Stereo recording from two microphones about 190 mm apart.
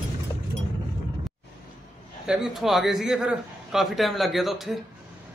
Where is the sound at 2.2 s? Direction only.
5° right (ahead or behind).